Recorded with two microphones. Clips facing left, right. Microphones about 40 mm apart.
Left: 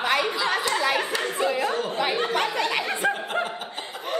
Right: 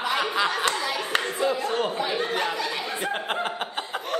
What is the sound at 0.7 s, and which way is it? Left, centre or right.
Clapping, left.